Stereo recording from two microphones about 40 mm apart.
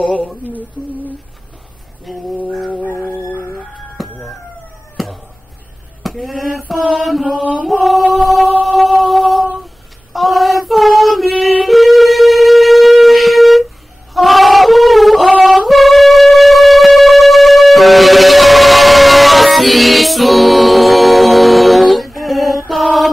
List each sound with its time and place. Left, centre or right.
0.0 s speech: centre
2.1 s mantra: centre
4.0 s crowing: centre
4.9 s a sound: centre
6.0 s speech: centre
6.9 s mantra: centre
7.6 s a sound: centre
10.1 s child singing: centre
14.1 s a sound: centre
15.4 s music: centre